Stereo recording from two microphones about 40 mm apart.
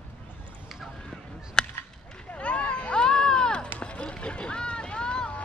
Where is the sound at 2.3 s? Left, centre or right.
Left.